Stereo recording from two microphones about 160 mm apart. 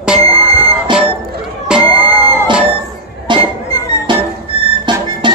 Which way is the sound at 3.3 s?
30° right (ahead or behind).